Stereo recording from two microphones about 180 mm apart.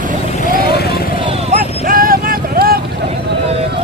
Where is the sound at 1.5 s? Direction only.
50° right (ahead or behind).